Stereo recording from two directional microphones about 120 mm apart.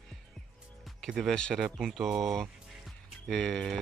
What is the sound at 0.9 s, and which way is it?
Speech, 5° left (ahead or behind).